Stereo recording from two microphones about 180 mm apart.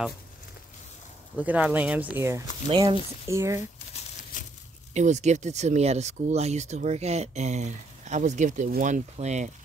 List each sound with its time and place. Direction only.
1.3 s speech: 10° right (ahead or behind)
3.9 s a sound: 45° left (ahead or behind)
4.9 s speech: 40° right (ahead or behind)